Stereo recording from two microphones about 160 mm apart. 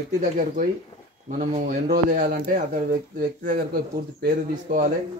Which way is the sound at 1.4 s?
50° right (ahead or behind).